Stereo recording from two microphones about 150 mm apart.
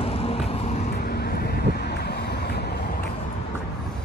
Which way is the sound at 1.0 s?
90° left.